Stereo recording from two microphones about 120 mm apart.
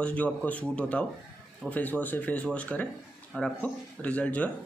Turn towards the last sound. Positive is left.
turn(degrees=10)  # may be behind; listen again after turning